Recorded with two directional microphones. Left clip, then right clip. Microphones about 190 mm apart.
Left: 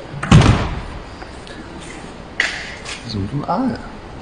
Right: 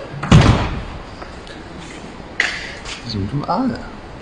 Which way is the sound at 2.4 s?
5° left (ahead or behind).